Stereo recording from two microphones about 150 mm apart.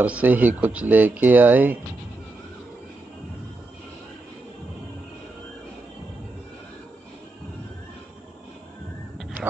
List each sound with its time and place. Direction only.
0.0 s speech: 10° right (ahead or behind)